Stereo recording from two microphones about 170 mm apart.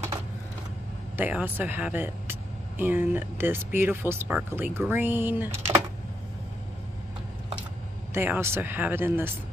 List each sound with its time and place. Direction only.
1.1 s speech: 10° right (ahead or behind)
8.1 s speech: 15° right (ahead or behind)